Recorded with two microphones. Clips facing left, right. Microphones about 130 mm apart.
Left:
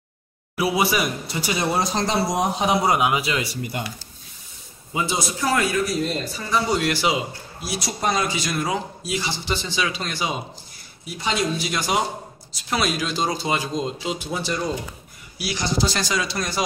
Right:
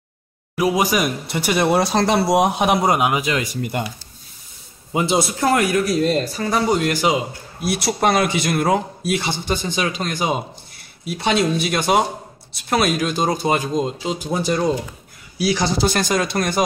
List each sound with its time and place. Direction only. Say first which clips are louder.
0.6 s speech: right 3 dB; 40° right (ahead or behind); by 2.8 s 65° right (ahead or behind)
2.8 s speech: right 2 dB; 50° right (ahead or behind)
5.1 s speech: right 5 dB; 60° right (ahead or behind)
7.6 s speech: right 6 dB; 65° right (ahead or behind)
11.1 s speech: right 5 dB; 65° right (ahead or behind); by 14.6 s 45° right (ahead or behind)
15.8 s speech: right 5 dB; 55° right (ahead or behind)